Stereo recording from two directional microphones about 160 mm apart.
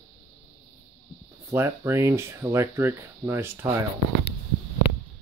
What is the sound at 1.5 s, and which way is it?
Speech, 15° right (ahead or behind).